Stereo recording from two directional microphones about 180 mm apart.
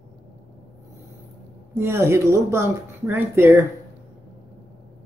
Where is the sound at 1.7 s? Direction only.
15° right (ahead or behind).